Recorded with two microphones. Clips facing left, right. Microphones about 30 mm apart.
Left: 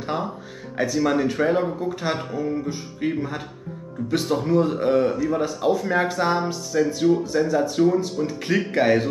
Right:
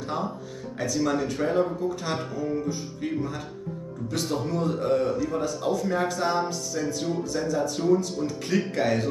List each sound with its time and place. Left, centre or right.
0.0 s speech: left